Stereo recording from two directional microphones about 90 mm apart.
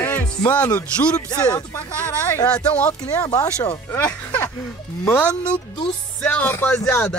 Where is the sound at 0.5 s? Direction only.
15° left (ahead or behind).